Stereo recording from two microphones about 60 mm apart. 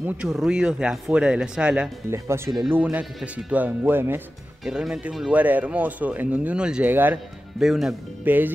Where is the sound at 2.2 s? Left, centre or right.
Right.